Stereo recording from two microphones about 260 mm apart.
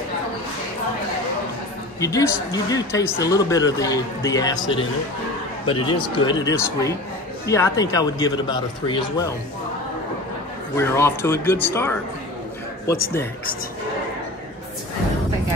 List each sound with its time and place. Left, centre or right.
2.0 s speech: centre
10.8 s speech: centre